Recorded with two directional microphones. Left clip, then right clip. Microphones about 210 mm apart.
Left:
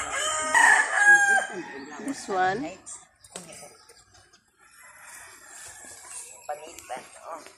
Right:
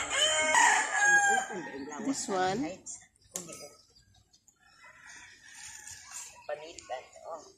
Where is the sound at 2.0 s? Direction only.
45° right (ahead or behind).